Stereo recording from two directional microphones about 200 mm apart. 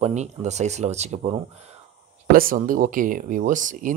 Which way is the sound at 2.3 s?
45° right (ahead or behind).